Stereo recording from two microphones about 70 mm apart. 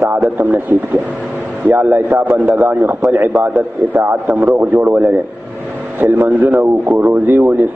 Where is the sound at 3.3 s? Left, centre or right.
Centre.